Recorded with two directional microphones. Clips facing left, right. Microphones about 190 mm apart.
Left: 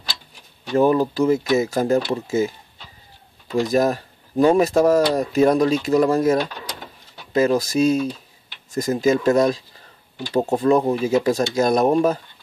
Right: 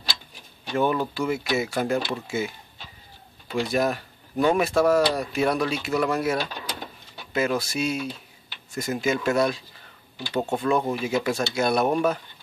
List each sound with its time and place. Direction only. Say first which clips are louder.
0.7 s speech: left 7 dB; 35° left (ahead or behind)
3.5 s speech: left 5 dB; 40° left (ahead or behind)